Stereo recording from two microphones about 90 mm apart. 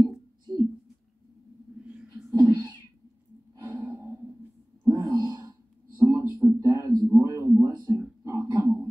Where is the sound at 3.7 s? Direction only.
25° right (ahead or behind).